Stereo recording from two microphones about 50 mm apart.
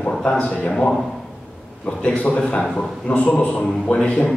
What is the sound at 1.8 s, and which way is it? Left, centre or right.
Speech, left.